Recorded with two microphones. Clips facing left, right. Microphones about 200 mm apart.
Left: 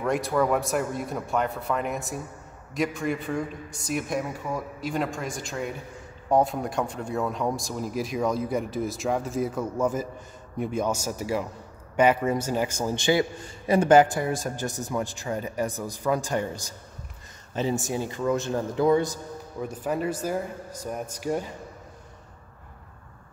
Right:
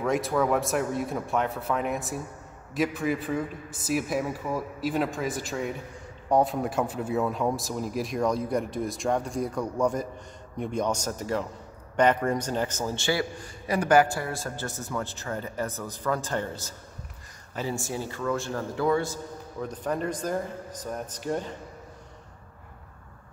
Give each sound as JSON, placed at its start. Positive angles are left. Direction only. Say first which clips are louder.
{"t": 0.0, "sound": "a man's voice", "louder": "left 1 dB", "side_deg": 0}
{"t": 19.6, "sound": "a man's voice", "louder": "left 2 dB", "side_deg": 10}